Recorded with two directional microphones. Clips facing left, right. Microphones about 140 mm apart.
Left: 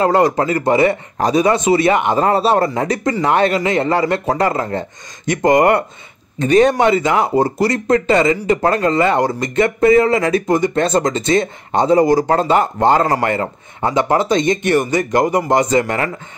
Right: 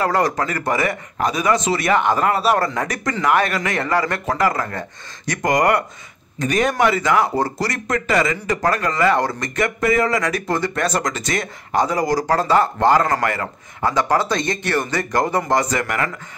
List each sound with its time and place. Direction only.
0.0 s a man's voice: 25° left (ahead or behind)